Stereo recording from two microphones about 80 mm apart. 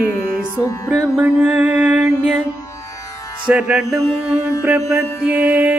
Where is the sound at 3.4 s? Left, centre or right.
Centre.